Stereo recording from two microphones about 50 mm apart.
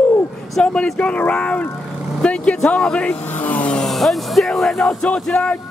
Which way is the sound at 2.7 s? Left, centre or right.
Left.